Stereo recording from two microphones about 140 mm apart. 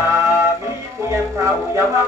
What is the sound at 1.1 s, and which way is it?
Speech, 20° right (ahead or behind).